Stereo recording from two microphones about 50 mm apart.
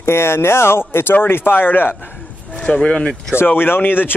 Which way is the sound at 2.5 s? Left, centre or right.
Left.